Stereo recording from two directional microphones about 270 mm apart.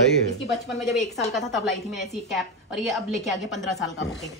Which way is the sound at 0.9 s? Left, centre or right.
Centre.